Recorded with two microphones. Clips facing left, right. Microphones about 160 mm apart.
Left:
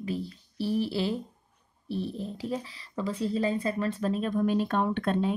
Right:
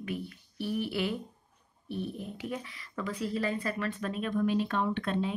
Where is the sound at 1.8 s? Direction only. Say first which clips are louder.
Left 4 dB; 30° left (ahead or behind).